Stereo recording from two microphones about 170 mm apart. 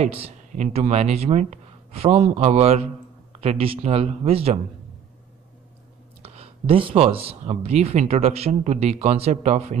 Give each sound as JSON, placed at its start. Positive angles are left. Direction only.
{"t": 0.0, "sound": "speech", "side_deg": -35}
{"t": 6.2, "sound": "speech", "side_deg": -35}